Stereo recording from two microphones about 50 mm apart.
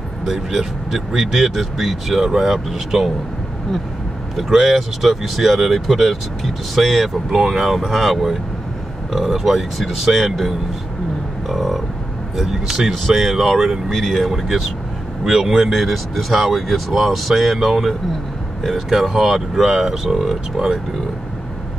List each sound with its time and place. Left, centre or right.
0.2 s speech: centre
4.4 s speech: centre